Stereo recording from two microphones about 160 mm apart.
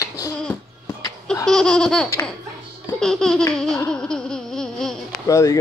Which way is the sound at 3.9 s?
5° left (ahead or behind).